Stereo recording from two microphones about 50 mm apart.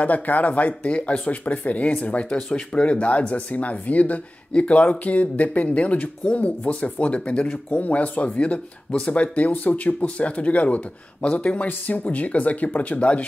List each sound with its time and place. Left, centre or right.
0.0 s speech: left
10.0 s speech: left